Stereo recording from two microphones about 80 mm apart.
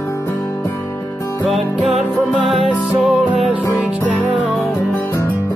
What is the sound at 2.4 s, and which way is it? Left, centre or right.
Music, centre.